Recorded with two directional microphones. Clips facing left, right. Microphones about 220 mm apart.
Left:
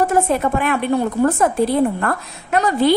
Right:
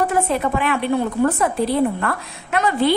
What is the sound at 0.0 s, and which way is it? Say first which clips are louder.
A woman's voice: left 3 dB; 45° left (ahead or behind).